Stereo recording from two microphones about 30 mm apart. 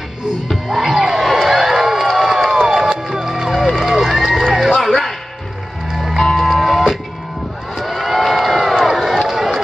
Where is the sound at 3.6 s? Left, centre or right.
Centre.